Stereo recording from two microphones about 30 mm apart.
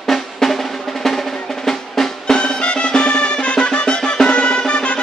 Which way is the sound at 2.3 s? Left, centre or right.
Left.